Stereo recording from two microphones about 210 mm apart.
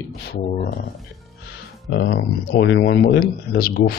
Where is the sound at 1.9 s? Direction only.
50° left (ahead or behind).